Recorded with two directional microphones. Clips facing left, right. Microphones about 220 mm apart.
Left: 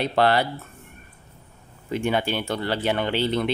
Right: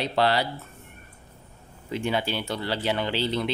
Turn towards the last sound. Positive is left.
turn(degrees=55)  # may be behind; listen again after turning